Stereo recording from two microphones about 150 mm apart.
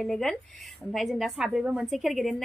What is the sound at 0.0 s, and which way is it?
A woman's voice, centre (ahead or behind).